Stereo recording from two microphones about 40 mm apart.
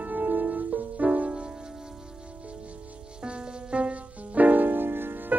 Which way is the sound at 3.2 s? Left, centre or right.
Right.